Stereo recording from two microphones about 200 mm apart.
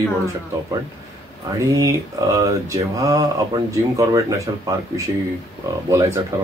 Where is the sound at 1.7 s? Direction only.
15° right (ahead or behind).